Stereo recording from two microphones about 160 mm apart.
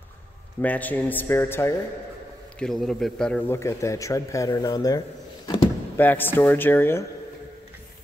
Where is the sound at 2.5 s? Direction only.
5° left (ahead or behind); by 5.6 s 25° left (ahead or behind).